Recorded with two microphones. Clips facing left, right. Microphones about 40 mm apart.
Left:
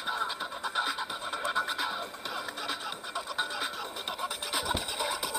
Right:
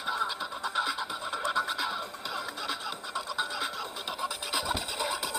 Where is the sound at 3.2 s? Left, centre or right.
Left.